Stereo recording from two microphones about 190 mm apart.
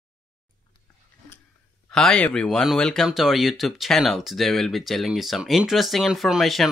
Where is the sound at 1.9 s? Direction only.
5° left (ahead or behind).